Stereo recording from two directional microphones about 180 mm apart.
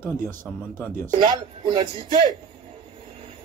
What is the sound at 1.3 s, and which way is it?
Speech, 30° right (ahead or behind).